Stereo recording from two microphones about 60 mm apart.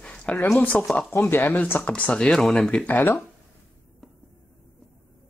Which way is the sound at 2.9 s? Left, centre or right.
Left.